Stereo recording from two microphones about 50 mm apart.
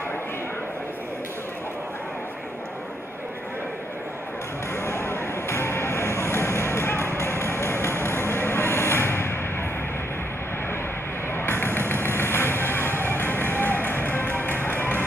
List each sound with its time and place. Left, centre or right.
4.8 s music: left
11.3 s music: left